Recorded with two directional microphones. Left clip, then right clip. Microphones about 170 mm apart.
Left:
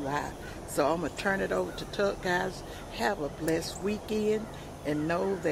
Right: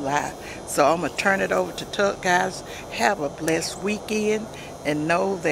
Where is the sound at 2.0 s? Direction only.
45° right (ahead or behind).